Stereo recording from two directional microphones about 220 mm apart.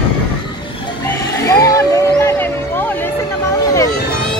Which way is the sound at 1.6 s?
15° left (ahead or behind).